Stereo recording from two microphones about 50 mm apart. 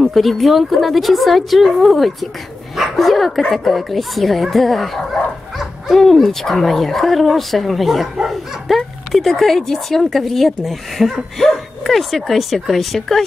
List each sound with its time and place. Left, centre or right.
0.0 s speech: centre